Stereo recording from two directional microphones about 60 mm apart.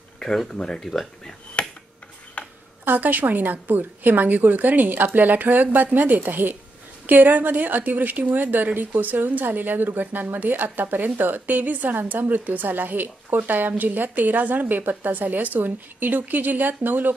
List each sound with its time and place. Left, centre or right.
0.2 s speech: centre
1.6 s a sound: centre
2.8 s a woman's voice: right